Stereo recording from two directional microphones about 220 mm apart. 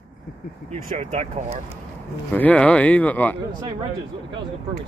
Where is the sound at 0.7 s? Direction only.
30° right (ahead or behind).